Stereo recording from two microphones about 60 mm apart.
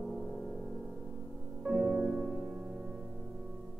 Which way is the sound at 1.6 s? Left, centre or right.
Centre.